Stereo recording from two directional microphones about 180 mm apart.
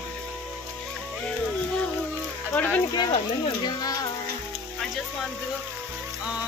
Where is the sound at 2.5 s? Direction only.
10° left (ahead or behind).